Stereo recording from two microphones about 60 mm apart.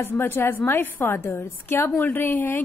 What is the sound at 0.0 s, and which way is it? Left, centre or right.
A woman's voice, left.